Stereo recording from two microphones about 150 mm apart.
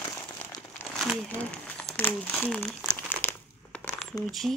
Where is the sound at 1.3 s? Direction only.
10° left (ahead or behind).